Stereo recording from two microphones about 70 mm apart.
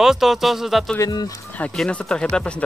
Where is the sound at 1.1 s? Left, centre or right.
Left.